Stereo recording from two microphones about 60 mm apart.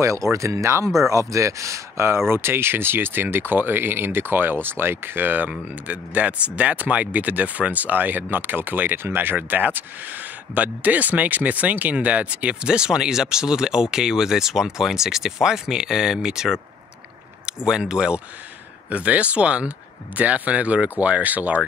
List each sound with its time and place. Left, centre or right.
0.0 s speech: right